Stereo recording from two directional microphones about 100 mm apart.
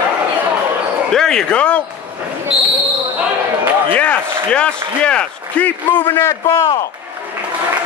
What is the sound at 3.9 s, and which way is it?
A man's voice, 10° left (ahead or behind).